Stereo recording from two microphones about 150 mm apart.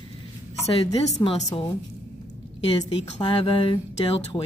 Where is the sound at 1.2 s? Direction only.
45° left (ahead or behind).